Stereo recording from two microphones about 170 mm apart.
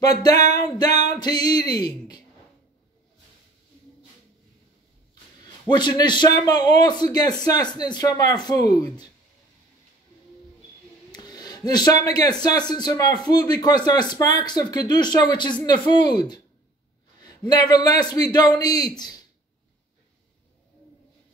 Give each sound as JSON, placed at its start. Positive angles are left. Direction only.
{"t": 0.0, "sound": "speech", "side_deg": 20}
{"t": 5.4, "sound": "speech", "side_deg": 25}
{"t": 11.1, "sound": "speech", "side_deg": 25}